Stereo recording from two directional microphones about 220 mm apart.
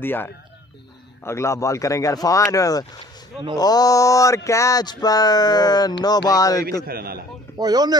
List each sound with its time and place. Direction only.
0.0 s speech: 10° left (ahead or behind)
6.9 s a man's voice: 45° right (ahead or behind)
7.5 s speech: 20° right (ahead or behind)